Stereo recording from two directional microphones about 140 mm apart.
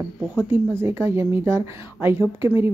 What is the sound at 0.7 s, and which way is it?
A woman's voice, 20° right (ahead or behind).